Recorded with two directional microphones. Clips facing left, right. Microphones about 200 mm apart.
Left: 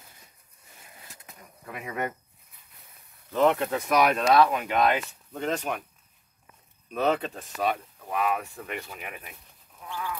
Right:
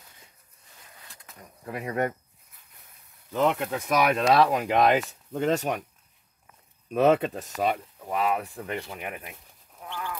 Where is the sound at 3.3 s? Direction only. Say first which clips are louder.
Left 2 dB; 15° right (ahead or behind).